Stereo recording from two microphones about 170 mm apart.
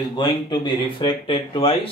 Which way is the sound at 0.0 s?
25° left (ahead or behind).